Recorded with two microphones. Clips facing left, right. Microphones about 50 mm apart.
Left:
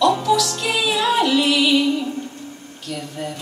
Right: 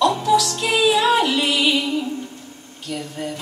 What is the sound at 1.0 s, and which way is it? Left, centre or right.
Music, centre.